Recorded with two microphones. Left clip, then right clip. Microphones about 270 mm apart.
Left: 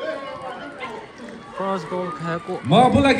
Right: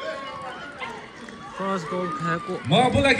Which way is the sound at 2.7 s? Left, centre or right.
Left.